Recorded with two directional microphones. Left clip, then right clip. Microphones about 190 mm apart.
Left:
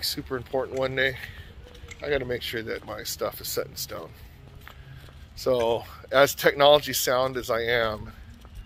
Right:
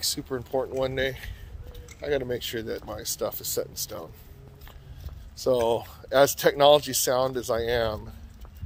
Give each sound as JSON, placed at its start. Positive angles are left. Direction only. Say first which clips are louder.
{"t": 0.0, "sound": "speech", "louder": "even", "side_deg": -15}
{"t": 5.4, "sound": "speech", "louder": "even", "side_deg": -20}